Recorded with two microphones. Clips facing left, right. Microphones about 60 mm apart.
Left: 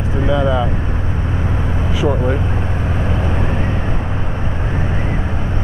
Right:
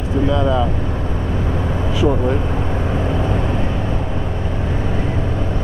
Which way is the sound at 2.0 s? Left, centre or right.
Centre.